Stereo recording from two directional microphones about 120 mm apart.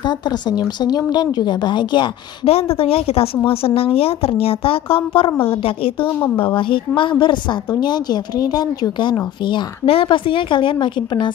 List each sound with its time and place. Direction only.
0.0 s speech: 35° left (ahead or behind)
2.4 s speech: 55° left (ahead or behind)